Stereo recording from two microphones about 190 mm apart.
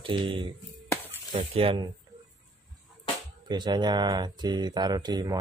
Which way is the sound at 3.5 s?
25° right (ahead or behind).